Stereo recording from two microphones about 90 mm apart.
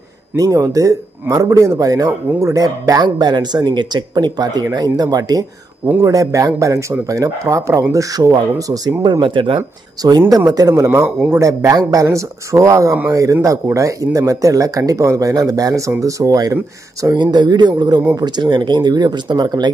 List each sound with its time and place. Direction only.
0.4 s a man's voice: 40° right (ahead or behind)
9.0 s speech: 60° right (ahead or behind)
10.0 s a man's voice: 45° right (ahead or behind)